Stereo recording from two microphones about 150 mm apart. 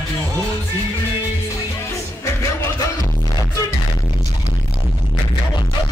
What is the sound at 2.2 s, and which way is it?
Music, 20° left (ahead or behind).